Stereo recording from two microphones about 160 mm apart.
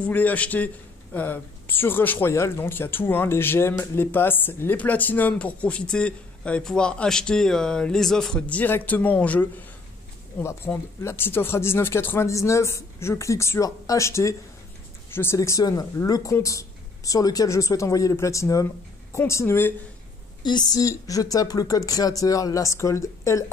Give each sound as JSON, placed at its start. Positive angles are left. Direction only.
{"t": 0.0, "sound": "speech", "side_deg": 10}
{"t": 20.4, "sound": "speech", "side_deg": 25}